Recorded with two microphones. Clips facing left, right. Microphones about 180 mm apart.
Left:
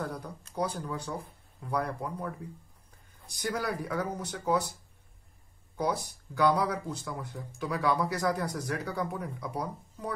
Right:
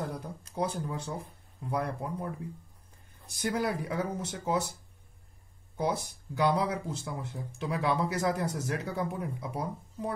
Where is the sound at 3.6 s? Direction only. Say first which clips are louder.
Right 1 dB; 25° right (ahead or behind).